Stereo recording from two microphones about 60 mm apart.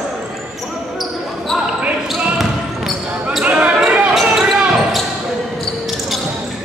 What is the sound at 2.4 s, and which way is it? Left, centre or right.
Basketball bounce, centre.